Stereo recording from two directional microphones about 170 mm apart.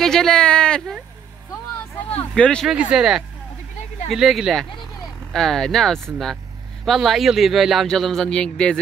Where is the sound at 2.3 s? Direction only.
5° left (ahead or behind).